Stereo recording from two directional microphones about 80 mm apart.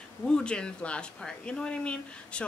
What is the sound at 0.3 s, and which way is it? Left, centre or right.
Speech, centre.